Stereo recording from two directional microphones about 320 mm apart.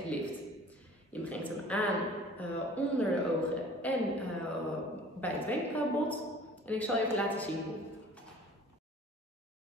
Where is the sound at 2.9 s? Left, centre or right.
Centre.